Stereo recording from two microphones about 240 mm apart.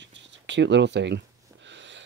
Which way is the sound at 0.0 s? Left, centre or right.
Right.